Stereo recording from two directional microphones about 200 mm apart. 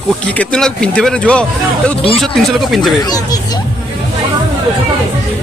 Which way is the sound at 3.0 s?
20° left (ahead or behind).